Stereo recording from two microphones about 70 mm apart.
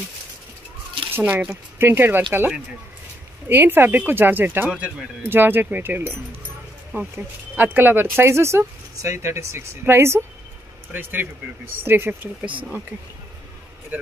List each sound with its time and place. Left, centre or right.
1.1 s speech: right
4.6 s speech: centre
5.3 s speech: right
12.4 s speech: centre